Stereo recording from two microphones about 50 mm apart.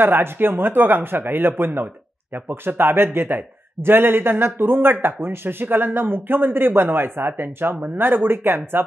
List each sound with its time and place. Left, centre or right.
0.0 s speech: right